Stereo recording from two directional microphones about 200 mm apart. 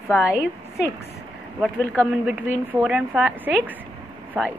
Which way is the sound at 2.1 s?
5° right (ahead or behind).